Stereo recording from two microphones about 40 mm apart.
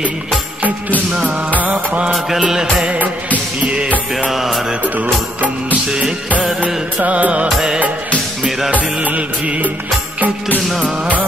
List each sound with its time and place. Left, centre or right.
0.6 s music: right
2.1 s music: centre
3.6 s music: right
4.3 s music: centre
5.9 s music: centre
6.6 s music: right
8.5 s music: centre
9.0 s music: right